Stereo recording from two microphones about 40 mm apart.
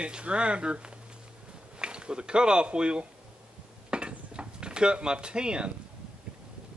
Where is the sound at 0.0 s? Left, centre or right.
Right.